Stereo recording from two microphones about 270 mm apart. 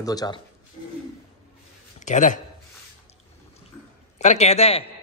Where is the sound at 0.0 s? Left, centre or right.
Centre.